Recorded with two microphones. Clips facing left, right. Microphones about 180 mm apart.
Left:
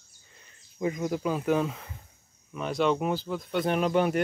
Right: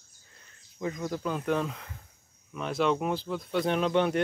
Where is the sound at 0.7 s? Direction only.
15° left (ahead or behind).